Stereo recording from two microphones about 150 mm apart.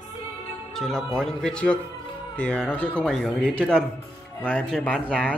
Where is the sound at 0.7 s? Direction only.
Centre (ahead or behind).